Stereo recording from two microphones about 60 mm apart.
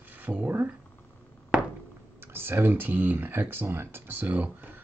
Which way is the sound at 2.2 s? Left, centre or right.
Right.